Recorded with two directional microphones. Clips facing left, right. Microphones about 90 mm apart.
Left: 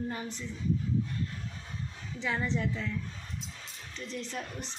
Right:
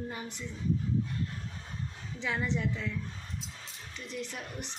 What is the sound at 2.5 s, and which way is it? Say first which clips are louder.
Speech: even; 10° right (ahead or behind).